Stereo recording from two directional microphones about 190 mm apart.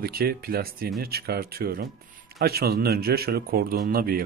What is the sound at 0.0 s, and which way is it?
Speech, 55° right (ahead or behind).